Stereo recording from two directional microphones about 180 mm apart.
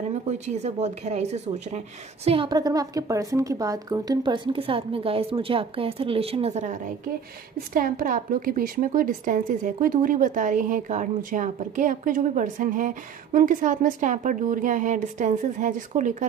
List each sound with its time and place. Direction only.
0.1 s a woman's voice: 40° right (ahead or behind)
2.2 s a woman's voice: 30° right (ahead or behind)
7.7 s a woman's voice: 50° right (ahead or behind)